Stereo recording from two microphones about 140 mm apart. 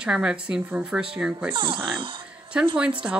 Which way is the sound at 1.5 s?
35° right (ahead or behind).